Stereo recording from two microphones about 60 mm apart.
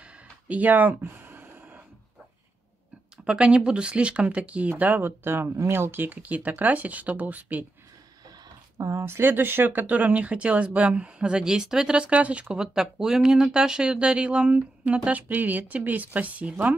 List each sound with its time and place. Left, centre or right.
0.5 s speech: right
1.1 s a sound: right
3.3 s speech: centre
8.7 s speech: right
9.0 s speech: right